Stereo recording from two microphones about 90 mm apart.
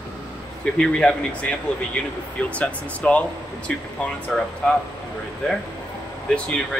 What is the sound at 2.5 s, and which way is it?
Speech, 15° left (ahead or behind).